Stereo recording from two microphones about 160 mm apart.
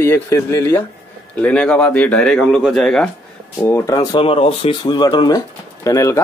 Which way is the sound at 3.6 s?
20° left (ahead or behind).